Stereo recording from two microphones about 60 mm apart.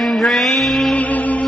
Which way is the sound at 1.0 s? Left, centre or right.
Left.